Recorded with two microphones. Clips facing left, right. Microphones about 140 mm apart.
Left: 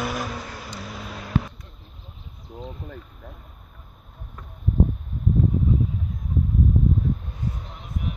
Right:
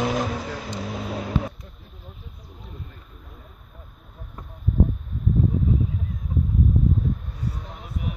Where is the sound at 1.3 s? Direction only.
55° left (ahead or behind).